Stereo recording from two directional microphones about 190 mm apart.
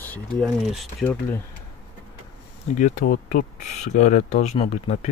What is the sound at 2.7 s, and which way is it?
Speech, 40° left (ahead or behind).